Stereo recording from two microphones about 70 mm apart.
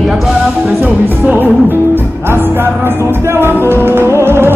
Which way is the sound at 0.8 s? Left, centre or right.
Right.